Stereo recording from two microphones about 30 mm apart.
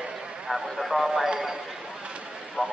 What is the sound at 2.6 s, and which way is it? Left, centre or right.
Speech, right.